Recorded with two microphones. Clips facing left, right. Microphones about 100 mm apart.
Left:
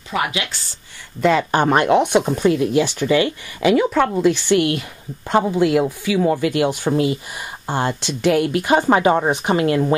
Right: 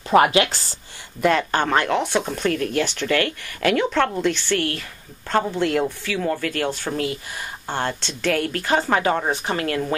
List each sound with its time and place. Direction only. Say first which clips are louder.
0.1 s speech: right 7 dB; 50° right (ahead or behind)
1.5 s speech: left 5 dB; 15° left (ahead or behind)